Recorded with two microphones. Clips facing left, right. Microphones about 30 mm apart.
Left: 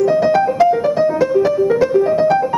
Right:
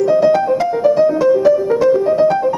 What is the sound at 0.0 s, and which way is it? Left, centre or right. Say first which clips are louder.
Music: right 1 dB; centre.